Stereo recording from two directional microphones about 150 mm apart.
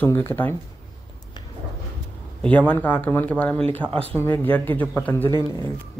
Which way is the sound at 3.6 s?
40° right (ahead or behind).